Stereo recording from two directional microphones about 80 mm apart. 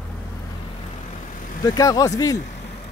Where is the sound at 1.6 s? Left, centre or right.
Left.